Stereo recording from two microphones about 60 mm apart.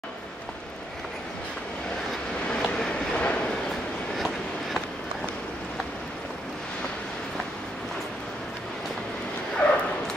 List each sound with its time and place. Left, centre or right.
2.6 s train: centre
9.6 s bow-wow: left